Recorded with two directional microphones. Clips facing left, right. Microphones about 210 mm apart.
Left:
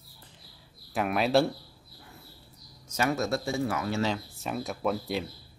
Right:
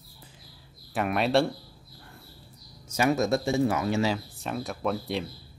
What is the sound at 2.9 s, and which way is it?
Speech, 15° right (ahead or behind).